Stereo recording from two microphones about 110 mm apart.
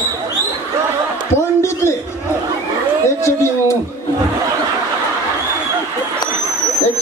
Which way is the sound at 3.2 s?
25° left (ahead or behind).